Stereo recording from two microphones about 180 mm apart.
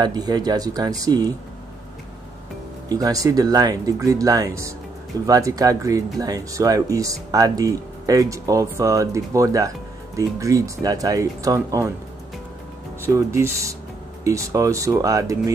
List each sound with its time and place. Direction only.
0.0 s speech: 20° right (ahead or behind)
2.9 s speech: 20° right (ahead or behind)
13.0 s speech: 15° right (ahead or behind)